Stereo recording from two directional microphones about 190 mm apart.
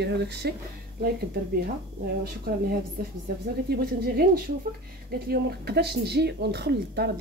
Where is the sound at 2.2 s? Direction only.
50° right (ahead or behind).